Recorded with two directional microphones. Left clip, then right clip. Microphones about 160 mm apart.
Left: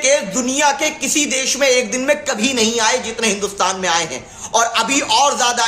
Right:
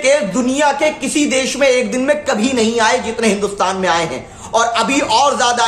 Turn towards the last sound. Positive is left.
turn(degrees=10)  # may be behind; listen again after turning